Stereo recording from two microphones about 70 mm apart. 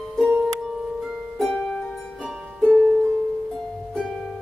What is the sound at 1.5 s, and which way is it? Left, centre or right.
Harp, centre.